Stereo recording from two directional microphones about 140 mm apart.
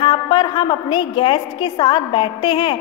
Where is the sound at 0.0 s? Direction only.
35° left (ahead or behind).